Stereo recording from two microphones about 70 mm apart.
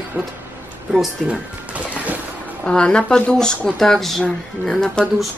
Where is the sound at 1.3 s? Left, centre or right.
Centre.